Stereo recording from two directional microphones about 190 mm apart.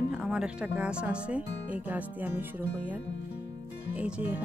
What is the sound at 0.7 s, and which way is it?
Speech, 5° right (ahead or behind).